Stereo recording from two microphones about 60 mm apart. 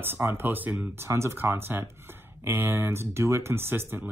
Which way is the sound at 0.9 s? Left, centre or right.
Right.